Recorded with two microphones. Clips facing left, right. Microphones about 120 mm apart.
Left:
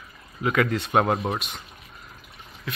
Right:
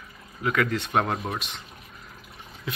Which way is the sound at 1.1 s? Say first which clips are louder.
Left 5 dB; 25° left (ahead or behind).